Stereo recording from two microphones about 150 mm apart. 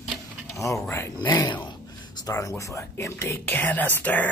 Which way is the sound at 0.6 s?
20° left (ahead or behind).